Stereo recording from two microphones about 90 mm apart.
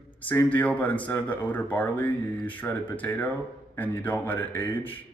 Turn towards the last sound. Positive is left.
turn(degrees=20)  # may be behind; listen again after turning